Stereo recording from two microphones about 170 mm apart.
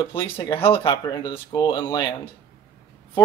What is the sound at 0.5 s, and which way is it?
Speech, 35° left (ahead or behind).